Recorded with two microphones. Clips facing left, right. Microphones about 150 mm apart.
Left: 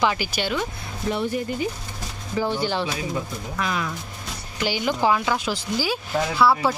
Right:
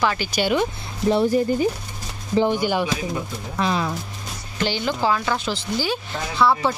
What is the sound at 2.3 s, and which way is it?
Speech, 15° right (ahead or behind).